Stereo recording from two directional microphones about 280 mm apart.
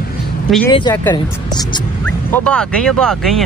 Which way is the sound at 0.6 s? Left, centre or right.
Centre.